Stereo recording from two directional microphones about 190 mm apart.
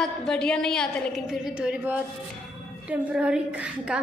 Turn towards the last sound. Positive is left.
turn(degrees=-5)  # may be behind; listen again after turning